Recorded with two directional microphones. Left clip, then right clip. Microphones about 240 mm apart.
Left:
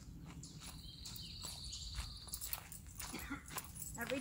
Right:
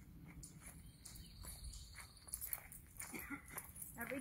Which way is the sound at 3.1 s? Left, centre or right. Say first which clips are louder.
Left 3 dB; right.